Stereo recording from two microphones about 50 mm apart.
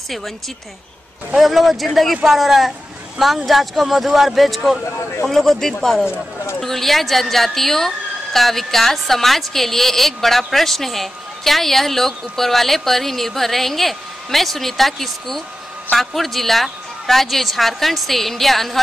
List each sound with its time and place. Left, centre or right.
1.3 s speech: centre
4.8 s speech: left
5.2 s speech: centre